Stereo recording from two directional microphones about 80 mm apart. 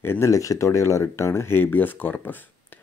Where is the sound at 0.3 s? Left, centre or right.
Left.